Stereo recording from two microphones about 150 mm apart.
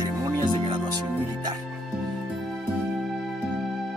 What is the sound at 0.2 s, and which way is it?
Music, 25° right (ahead or behind).